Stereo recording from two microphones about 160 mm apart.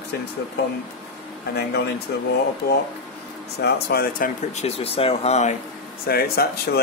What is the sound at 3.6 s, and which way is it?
Speech, 80° left.